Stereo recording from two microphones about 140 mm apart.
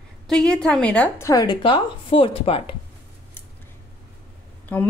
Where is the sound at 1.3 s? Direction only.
30° left (ahead or behind).